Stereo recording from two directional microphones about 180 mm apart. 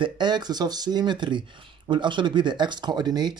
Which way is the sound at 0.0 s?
25° right (ahead or behind).